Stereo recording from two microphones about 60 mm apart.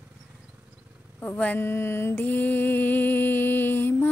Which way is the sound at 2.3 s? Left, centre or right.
Left.